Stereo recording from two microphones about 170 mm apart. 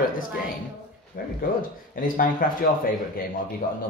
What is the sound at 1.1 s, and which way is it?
Speech, 60° left (ahead or behind).